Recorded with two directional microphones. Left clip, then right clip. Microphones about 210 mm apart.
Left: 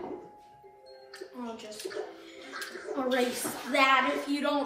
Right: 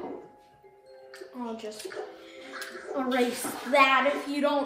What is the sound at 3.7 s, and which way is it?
Speech, 30° right (ahead or behind).